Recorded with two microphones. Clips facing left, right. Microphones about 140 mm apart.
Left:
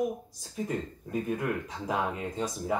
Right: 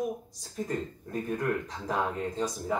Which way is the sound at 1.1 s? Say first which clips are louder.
Even; 10° left (ahead or behind).